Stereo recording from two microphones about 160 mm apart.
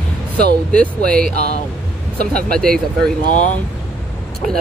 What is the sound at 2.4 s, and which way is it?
Speech, 65° right (ahead or behind).